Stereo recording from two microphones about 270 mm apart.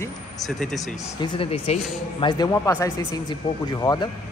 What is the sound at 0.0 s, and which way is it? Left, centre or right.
Speech, centre.